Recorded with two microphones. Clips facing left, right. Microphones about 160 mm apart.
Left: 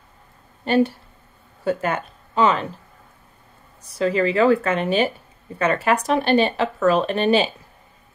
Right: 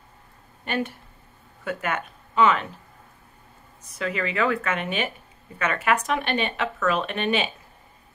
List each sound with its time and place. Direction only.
0.7 s speech: 30° left (ahead or behind)
3.8 s speech: 35° left (ahead or behind)